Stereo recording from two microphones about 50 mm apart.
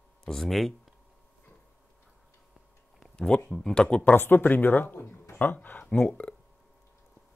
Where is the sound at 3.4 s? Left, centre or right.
Centre.